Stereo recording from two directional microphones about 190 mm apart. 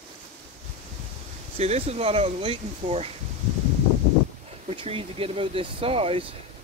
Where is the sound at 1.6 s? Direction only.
35° right (ahead or behind).